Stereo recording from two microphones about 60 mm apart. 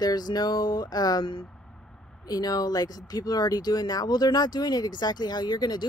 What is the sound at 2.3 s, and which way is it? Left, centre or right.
Speech, left.